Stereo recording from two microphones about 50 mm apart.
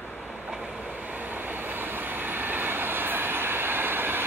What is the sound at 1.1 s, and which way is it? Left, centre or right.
Vehicle, right.